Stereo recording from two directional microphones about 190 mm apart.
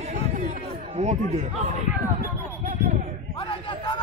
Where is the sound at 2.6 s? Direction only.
40° right (ahead or behind).